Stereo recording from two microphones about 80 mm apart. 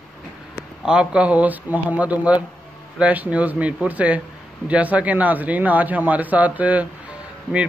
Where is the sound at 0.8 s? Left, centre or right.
Centre.